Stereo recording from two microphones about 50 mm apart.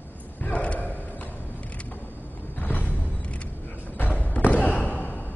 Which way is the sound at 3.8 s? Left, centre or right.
Left.